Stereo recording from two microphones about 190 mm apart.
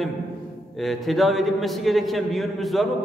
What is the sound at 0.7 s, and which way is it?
A man's voice, centre (ahead or behind).